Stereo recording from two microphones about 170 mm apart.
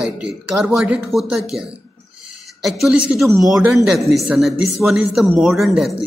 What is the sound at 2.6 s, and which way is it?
Speech, centre (ahead or behind).